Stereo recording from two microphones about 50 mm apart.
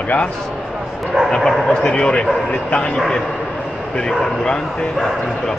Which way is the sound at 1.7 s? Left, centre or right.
Centre.